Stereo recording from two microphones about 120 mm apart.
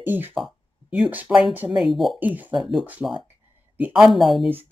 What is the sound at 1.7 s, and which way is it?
Speech, centre (ahead or behind).